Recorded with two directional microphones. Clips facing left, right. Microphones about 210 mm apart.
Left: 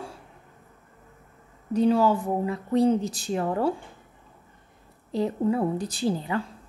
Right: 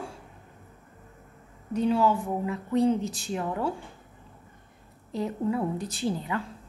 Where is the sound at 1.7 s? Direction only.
40° left (ahead or behind).